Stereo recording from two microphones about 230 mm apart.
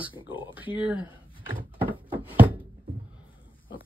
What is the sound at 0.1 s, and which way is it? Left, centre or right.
Speech, left.